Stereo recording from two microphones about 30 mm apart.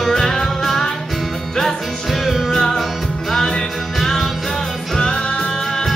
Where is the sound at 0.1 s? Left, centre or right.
Centre.